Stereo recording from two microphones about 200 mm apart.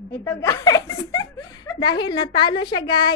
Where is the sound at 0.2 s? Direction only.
15° left (ahead or behind).